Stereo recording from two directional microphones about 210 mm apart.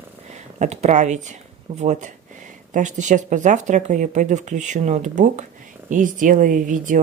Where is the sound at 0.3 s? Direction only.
35° right (ahead or behind).